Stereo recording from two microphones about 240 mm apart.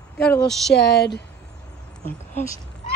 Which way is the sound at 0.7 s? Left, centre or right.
Left.